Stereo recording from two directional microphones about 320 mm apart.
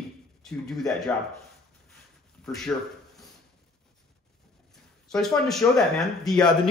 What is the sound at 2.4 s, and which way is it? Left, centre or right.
Speech, centre.